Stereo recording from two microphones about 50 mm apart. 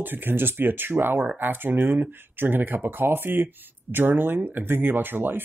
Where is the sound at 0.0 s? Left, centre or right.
Right.